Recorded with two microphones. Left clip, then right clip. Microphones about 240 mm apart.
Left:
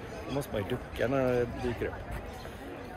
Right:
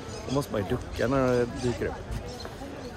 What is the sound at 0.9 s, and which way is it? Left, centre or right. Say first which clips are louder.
Speech: right 3 dB; centre.